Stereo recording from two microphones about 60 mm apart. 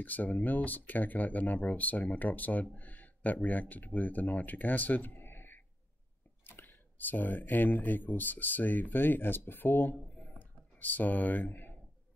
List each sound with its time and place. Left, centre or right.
0.0 s speech: left